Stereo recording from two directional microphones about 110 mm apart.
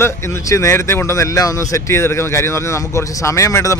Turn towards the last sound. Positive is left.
turn(degrees=30)  # may be behind; listen again after turning